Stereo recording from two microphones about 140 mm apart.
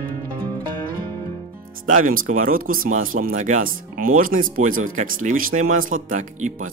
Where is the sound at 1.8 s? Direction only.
70° right (ahead or behind).